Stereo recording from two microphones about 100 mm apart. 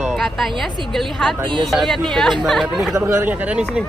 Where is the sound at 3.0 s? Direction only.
20° right (ahead or behind).